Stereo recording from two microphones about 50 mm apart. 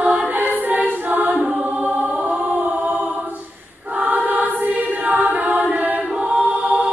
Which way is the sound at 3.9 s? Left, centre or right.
Right.